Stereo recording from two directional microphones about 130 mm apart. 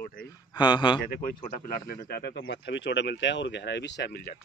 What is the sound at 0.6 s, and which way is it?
Speech, 35° left (ahead or behind).